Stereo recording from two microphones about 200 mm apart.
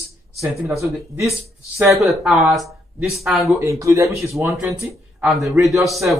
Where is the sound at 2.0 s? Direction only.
Centre (ahead or behind).